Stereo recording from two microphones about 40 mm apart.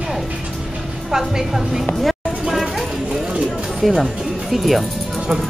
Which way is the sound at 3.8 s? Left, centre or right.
Centre.